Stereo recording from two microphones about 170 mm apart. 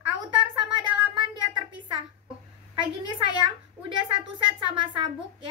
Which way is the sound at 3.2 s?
30° right (ahead or behind).